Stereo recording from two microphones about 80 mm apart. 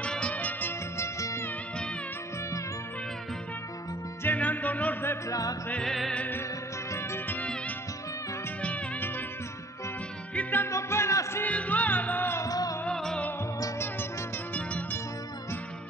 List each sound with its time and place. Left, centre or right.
0.0 s music: centre
0.9 s music: left
4.2 s music: left
5.3 s music: left
5.7 s music: centre
6.9 s music: left
10.3 s music: left
10.7 s music: left
11.4 s music: centre
12.4 s music: left
12.8 s music: centre
14.5 s music: left